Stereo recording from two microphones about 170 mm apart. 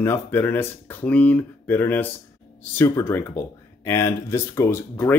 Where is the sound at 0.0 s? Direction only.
15° left (ahead or behind).